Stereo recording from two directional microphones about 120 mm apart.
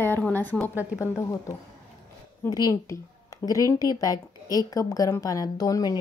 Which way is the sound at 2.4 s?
30° left (ahead or behind).